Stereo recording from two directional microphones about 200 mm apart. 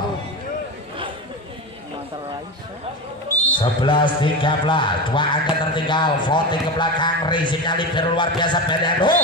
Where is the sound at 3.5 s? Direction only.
25° left (ahead or behind).